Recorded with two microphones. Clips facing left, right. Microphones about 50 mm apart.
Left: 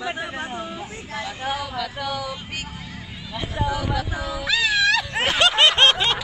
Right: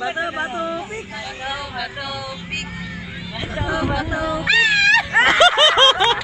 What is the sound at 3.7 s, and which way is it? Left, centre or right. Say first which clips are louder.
Speech: right 4 dB; right.